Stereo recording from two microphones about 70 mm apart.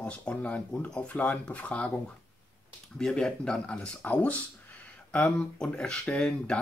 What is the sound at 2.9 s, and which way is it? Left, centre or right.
Speech, centre.